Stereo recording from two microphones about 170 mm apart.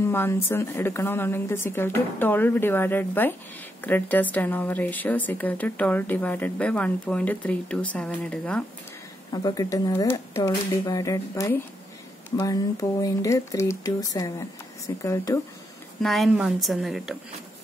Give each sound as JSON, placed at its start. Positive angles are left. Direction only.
{"t": 0.0, "sound": "a woman's voice", "side_deg": 15}
{"t": 9.3, "sound": "a woman's voice", "side_deg": 25}
{"t": 16.0, "sound": "a woman's voice", "side_deg": 0}